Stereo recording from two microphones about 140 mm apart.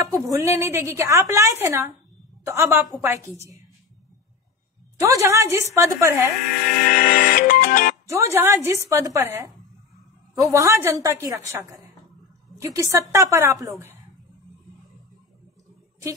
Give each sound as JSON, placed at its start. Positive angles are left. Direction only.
{"t": 0.1, "sound": "a woman's voice", "side_deg": -25}
{"t": 5.0, "sound": "a woman's voice", "side_deg": -20}
{"t": 6.5, "sound": "music", "side_deg": 80}
{"t": 8.1, "sound": "a woman's voice", "side_deg": -20}